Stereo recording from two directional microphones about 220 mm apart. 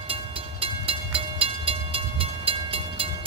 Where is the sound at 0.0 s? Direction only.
25° right (ahead or behind).